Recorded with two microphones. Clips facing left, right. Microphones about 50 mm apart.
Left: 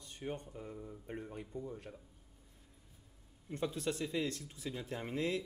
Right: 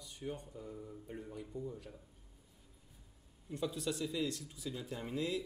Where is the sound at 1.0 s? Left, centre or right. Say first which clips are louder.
Left 3 dB; left.